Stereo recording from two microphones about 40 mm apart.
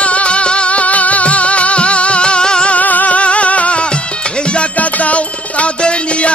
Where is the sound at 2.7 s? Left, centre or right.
Left.